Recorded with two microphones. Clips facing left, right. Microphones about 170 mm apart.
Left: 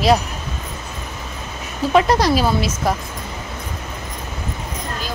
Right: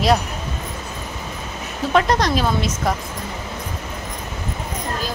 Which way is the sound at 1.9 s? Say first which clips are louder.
Left 3 dB; 5° left (ahead or behind).